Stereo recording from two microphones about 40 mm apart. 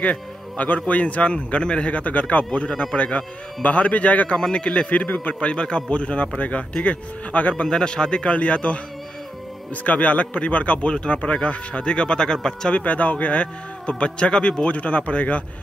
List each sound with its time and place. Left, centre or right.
0.0 s music: left
0.8 s speech: left
3.0 s speech: left
3.6 s speech: left
7.6 s speech: centre; by 8.7 s left
9.8 s speech: left; by 12.7 s centre
12.7 s speech: left
14.7 s speech: left